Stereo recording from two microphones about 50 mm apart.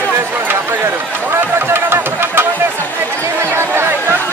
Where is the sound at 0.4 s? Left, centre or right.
Right.